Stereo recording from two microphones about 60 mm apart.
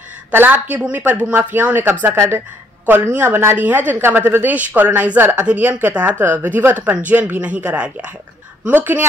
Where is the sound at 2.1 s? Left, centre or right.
Right.